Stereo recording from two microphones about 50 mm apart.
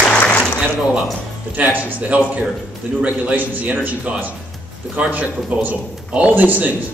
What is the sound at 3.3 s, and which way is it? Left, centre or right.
A man's voice, right.